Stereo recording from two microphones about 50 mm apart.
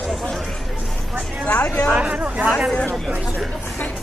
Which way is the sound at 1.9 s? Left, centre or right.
Right.